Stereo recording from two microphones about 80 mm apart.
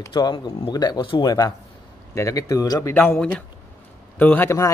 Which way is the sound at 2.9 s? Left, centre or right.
Left.